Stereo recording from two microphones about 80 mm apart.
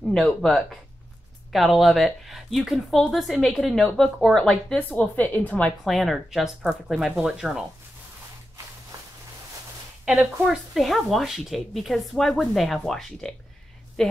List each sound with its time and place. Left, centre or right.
0.4 s a woman's voice: centre
4.7 s speech: centre
5.9 s a woman's voice: centre
10.0 s a woman's voice: centre